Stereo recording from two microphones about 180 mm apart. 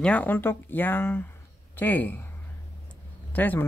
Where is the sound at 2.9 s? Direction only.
10° left (ahead or behind).